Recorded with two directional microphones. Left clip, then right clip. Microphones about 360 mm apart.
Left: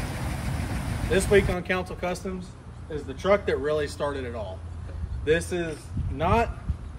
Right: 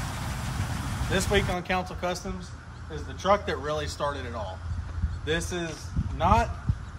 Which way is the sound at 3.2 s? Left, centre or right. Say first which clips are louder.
Left 2 dB; centre.